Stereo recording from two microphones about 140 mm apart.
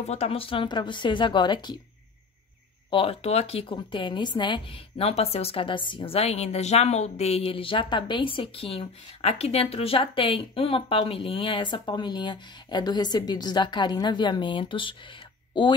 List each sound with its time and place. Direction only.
0.0 s speech: 50° left (ahead or behind); by 1.8 s 30° left (ahead or behind)
2.9 s speech: 45° left (ahead or behind)